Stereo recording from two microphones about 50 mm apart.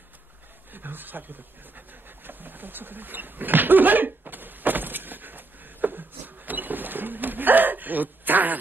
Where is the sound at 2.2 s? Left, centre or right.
Right.